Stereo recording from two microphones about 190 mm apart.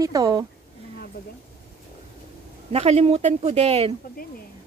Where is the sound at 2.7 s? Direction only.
35° right (ahead or behind).